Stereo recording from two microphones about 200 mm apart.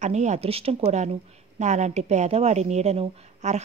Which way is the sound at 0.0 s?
35° right (ahead or behind).